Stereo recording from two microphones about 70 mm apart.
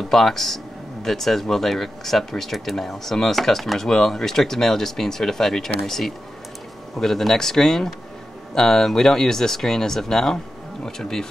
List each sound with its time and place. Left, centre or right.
0.1 s speech: centre